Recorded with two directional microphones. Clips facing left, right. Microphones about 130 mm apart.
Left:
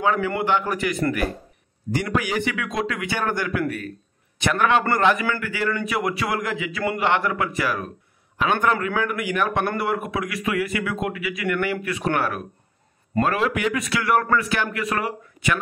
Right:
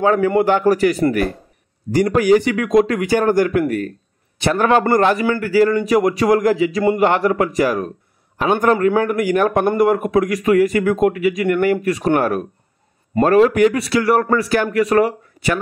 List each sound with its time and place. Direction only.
0.0 s a man's voice: 40° right (ahead or behind)